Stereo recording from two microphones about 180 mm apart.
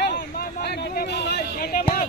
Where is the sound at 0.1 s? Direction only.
60° left (ahead or behind).